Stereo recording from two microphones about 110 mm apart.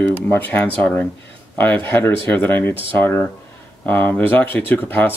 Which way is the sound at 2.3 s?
20° left (ahead or behind).